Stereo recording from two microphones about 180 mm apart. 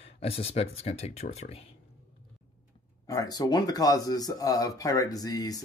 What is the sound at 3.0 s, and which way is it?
Speech, 20° left (ahead or behind).